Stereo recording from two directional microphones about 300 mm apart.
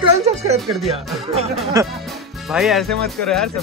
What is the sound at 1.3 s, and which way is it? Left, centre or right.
Speech, centre.